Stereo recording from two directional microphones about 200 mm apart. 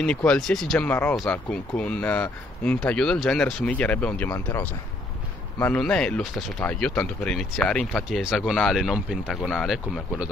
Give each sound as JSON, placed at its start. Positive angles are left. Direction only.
{"t": 0.0, "sound": "speech", "side_deg": 5}
{"t": 4.3, "sound": "speech", "side_deg": 20}
{"t": 5.6, "sound": "speech", "side_deg": 5}